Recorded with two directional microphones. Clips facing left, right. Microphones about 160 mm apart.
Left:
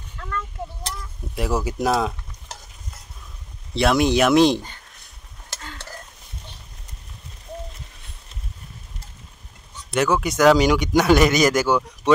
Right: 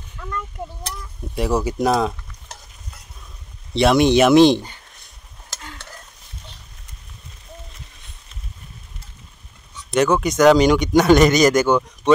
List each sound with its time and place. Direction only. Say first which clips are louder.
0.6 s speech: right 1 dB; 15° right (ahead or behind)
1.3 s stir: right 3 dB; centre (ahead or behind)
3.7 s speech: right 4 dB; centre (ahead or behind)
9.9 s speech: right 3 dB; 5° left (ahead or behind)